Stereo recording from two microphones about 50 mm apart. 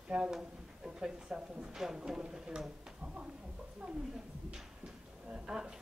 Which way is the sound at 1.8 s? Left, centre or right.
Centre.